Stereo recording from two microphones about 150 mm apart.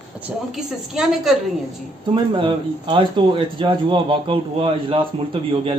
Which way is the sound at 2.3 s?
35° right (ahead or behind).